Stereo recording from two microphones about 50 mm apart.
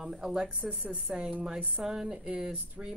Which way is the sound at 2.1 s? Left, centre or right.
Right.